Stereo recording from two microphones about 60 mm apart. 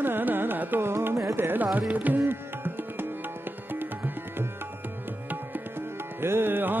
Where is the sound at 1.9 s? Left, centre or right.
Right.